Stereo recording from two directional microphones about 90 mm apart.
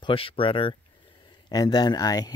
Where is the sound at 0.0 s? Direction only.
85° left.